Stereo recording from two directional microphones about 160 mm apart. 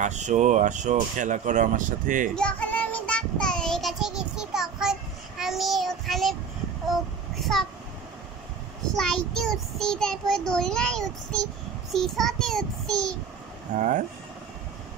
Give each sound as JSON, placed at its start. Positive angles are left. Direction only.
{"t": 0.0, "sound": "speech", "side_deg": -50}
{"t": 2.3, "sound": "child singing", "side_deg": 5}
{"t": 8.9, "sound": "child singing", "side_deg": 5}
{"t": 13.7, "sound": "speech", "side_deg": -50}